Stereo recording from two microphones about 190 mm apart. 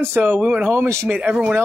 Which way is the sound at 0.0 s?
10° right (ahead or behind).